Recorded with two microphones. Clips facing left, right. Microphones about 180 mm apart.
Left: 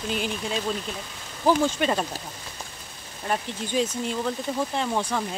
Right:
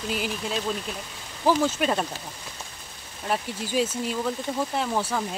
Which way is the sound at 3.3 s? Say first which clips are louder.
Even; 5° right (ahead or behind).